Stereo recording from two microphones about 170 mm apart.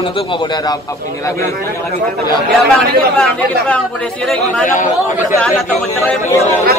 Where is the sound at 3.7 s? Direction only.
5° left (ahead or behind).